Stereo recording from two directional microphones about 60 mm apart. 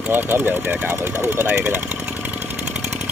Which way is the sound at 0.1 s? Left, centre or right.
Right.